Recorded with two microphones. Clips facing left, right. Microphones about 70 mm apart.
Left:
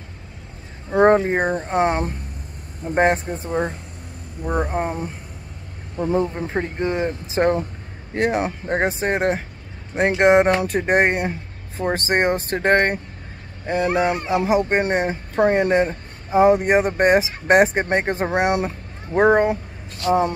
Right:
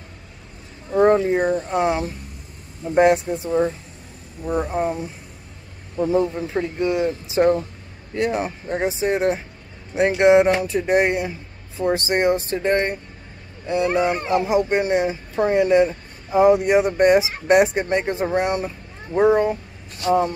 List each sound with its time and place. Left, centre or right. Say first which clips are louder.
0.9 s speech: left 1 dB; left
6.3 s speech: right 1 dB; left
18.4 s speech: left 3 dB; left